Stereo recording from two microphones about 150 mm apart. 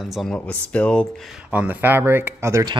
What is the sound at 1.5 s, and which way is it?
Speech, 10° right (ahead or behind).